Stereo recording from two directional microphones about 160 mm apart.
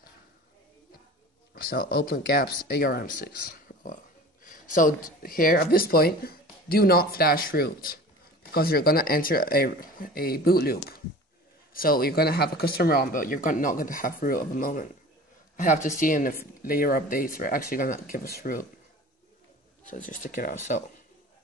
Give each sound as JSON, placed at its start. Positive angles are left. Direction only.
{"t": 1.5, "sound": "speech", "side_deg": 70}
{"t": 19.9, "sound": "speech", "side_deg": 55}